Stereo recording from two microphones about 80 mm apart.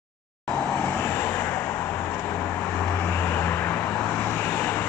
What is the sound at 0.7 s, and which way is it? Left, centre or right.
Vehicle, left.